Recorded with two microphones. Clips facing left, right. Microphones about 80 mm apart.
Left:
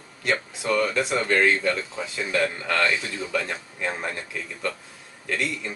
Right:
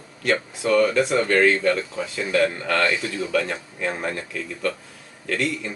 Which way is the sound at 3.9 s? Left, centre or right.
Centre.